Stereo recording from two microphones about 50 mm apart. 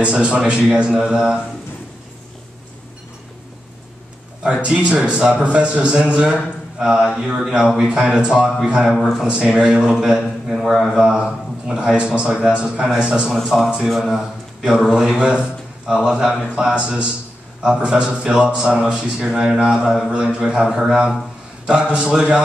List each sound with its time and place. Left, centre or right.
0.0 s a man's voice: right
4.4 s a man's voice: right
8.9 s a man's voice: centre
9.3 s a man's voice: right
10.5 s a man's voice: centre
11.0 s a man's voice: centre
13.3 s a man's voice: centre
14.9 s a man's voice: centre
15.1 s a man's voice: right